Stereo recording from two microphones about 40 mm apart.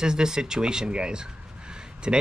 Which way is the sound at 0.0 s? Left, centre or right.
Centre.